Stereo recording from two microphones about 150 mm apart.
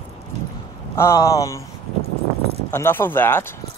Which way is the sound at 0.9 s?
20° left (ahead or behind).